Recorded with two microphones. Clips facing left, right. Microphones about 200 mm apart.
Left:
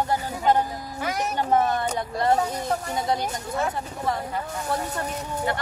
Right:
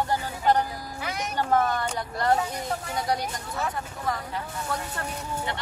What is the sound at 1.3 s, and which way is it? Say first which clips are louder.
Speech: left 1 dB; 20° left (ahead or behind).